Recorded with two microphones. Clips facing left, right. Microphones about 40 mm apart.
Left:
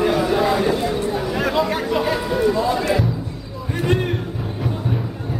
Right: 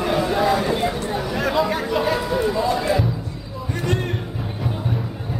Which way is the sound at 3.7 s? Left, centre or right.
Centre.